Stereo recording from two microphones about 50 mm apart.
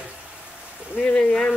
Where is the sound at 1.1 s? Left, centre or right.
Centre.